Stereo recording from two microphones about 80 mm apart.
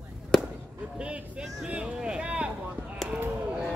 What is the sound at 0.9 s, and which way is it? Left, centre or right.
Speech, centre.